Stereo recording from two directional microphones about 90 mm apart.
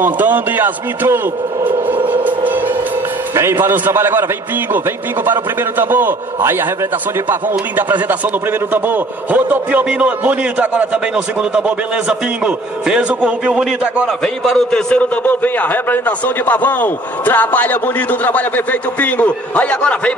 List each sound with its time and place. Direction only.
0.0 s a man's voice: 20° right (ahead or behind)
2.0 s music: 20° right (ahead or behind)
3.6 s a man's voice: 25° right (ahead or behind)
14.0 s a man's voice: 5° left (ahead or behind)